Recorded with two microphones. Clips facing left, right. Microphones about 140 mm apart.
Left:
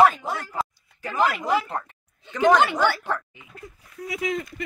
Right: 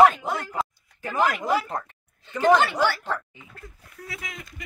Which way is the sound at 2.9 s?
15° left (ahead or behind).